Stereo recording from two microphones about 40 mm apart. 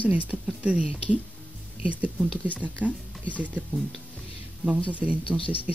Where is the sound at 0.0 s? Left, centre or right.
Right.